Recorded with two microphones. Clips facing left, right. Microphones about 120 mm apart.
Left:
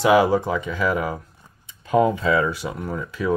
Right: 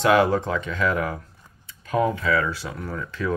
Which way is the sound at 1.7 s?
20° left (ahead or behind).